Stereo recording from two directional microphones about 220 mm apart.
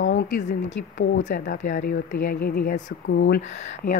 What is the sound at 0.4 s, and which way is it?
Speech, 35° left (ahead or behind).